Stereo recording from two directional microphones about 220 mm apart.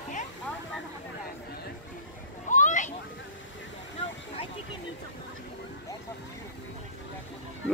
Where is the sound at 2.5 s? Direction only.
35° left (ahead or behind).